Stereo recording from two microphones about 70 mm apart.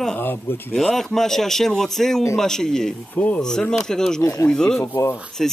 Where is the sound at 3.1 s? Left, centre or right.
Centre.